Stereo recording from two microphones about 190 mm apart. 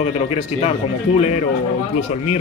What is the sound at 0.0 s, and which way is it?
Speech, 30° left (ahead or behind).